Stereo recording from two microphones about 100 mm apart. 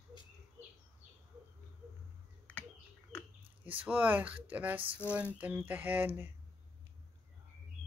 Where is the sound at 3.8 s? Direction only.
15° right (ahead or behind).